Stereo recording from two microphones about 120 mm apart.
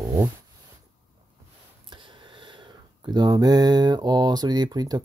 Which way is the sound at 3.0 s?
35° right (ahead or behind).